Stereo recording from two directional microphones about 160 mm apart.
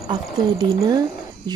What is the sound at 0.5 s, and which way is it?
Speech, 25° right (ahead or behind).